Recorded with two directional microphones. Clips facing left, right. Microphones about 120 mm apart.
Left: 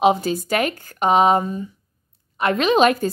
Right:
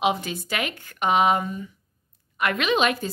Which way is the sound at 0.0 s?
35° left (ahead or behind).